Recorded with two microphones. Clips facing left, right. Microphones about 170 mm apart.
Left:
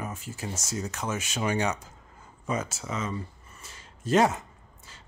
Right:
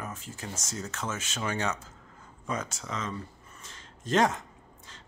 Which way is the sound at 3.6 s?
10° left (ahead or behind).